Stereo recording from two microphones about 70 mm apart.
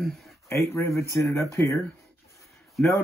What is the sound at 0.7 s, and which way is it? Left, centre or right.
Speech, left.